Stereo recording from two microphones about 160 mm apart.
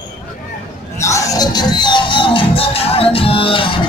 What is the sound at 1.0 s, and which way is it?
Music, 20° left (ahead or behind).